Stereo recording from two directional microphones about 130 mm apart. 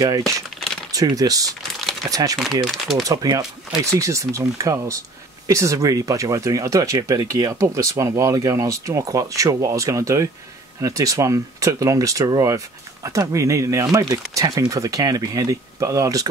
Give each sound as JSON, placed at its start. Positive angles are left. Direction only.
{"t": 0.9, "sound": "speech", "side_deg": -30}
{"t": 2.3, "sound": "speech", "side_deg": 0}
{"t": 3.0, "sound": "speech", "side_deg": -30}